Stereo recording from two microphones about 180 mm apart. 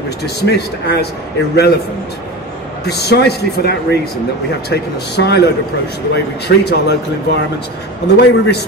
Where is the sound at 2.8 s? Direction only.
65° left (ahead or behind).